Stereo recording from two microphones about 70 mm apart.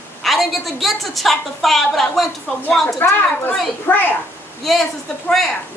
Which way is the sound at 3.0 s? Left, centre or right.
Left.